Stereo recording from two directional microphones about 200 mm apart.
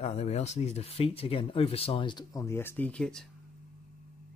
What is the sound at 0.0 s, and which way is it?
Speech, 35° left (ahead or behind).